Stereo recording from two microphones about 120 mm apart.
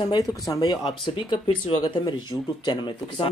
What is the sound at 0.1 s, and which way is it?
Speech, 35° left (ahead or behind).